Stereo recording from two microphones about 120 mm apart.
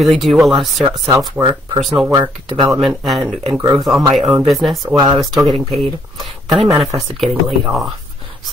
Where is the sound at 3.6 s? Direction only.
30° right (ahead or behind).